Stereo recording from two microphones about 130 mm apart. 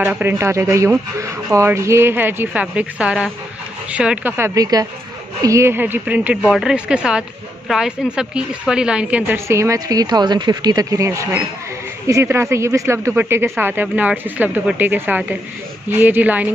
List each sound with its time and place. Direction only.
0.1 s speech: 15° right (ahead or behind)
4.6 s speech: 30° right (ahead or behind); by 9.4 s 10° right (ahead or behind)
9.5 s speech: 25° right (ahead or behind)